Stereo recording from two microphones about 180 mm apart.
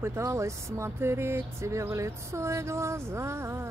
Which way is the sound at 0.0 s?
15° right (ahead or behind).